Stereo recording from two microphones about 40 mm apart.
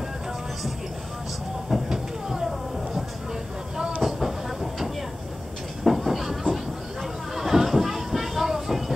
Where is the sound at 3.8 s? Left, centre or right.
Right.